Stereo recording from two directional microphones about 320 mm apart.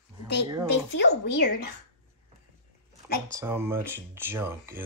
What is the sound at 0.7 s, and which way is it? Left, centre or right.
A woman's voice, left.